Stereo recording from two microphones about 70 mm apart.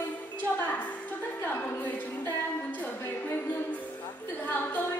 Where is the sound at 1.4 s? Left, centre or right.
Left.